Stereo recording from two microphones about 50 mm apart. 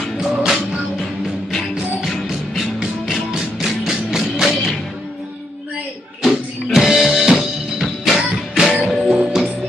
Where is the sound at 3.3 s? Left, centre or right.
Centre.